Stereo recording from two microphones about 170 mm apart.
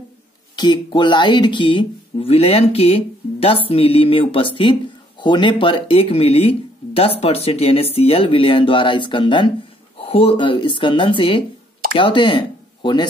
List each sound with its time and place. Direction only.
0.6 s speech: 25° left (ahead or behind)